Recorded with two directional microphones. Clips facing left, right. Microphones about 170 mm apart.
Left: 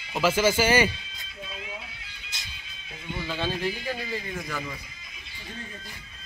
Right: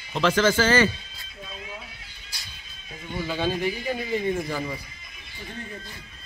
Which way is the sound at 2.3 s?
20° left (ahead or behind).